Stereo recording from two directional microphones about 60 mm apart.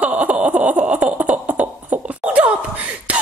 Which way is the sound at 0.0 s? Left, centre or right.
Right.